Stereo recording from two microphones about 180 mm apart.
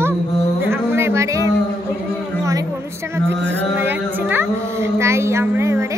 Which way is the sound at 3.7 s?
10° right (ahead or behind).